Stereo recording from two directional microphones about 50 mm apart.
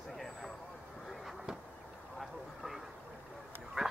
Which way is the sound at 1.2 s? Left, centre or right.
Centre.